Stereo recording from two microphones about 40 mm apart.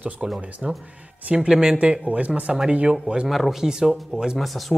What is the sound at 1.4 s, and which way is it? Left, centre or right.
Speech, centre.